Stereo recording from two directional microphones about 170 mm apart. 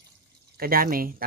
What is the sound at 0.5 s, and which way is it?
Speech, 60° right (ahead or behind).